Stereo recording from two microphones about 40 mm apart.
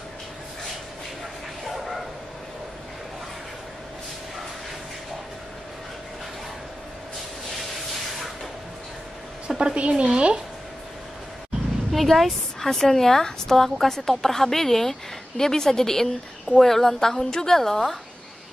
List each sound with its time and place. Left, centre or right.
1.6 s bow-wow: centre
7.5 s a sound: centre
9.6 s speech: right
11.9 s a woman's voice: centre